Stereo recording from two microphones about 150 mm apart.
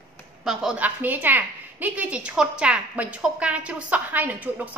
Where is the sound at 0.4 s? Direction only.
5° right (ahead or behind).